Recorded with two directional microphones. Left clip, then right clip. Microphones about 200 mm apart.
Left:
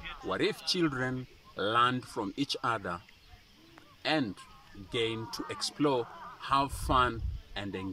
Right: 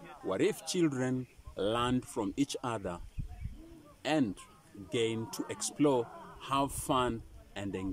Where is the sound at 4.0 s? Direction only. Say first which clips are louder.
Left 1 dB; 30° right (ahead or behind).